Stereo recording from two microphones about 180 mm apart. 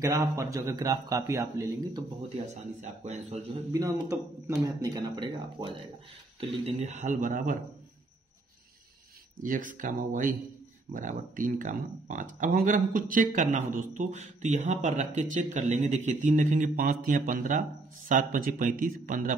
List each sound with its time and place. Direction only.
0.0 s speech: 20° right (ahead or behind)
2.2 s a man's voice: 40° right (ahead or behind)
3.7 s speech: 20° right (ahead or behind); by 7.5 s 45° right (ahead or behind)
9.4 s speech: 45° right (ahead or behind)